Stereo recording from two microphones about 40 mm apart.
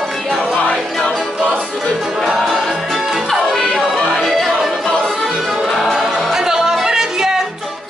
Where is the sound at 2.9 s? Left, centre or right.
Centre.